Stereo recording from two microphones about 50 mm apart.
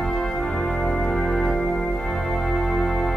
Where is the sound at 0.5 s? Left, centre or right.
Centre.